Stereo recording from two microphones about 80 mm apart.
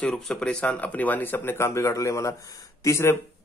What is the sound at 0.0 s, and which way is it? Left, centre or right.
Speech, centre.